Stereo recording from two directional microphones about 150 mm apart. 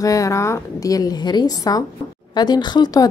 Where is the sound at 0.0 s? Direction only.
20° left (ahead or behind).